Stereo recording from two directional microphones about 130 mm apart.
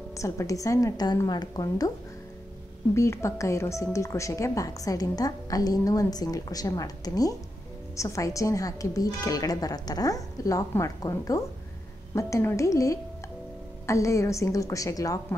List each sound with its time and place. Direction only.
0.2 s speech: 25° left (ahead or behind)
2.9 s speech: 20° left (ahead or behind)